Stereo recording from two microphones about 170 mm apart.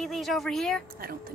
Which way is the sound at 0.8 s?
60° right (ahead or behind).